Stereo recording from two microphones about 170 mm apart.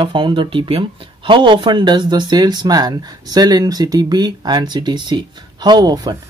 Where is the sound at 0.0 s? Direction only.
30° right (ahead or behind).